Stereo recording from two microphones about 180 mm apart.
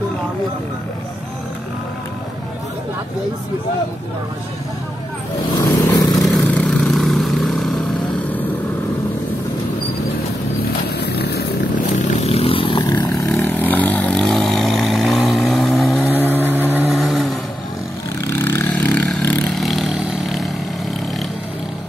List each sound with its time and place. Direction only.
5.6 s vehicle: 15° left (ahead or behind)
6.2 s vehicle: 5° left (ahead or behind)
11.0 s vehicle: 65° left (ahead or behind)
11.9 s vehicle: 35° left (ahead or behind)
13.3 s vehicle: 10° left (ahead or behind)
16.1 s vehicle: 10° right (ahead or behind)
18.2 s vehicle: 15° left (ahead or behind)